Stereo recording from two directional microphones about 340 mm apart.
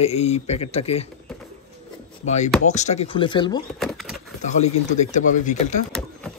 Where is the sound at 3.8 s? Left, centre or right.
Centre.